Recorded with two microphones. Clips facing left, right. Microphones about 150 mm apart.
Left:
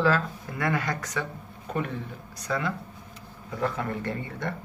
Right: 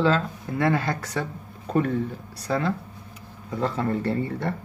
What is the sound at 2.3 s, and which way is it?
Speech, 30° right (ahead or behind).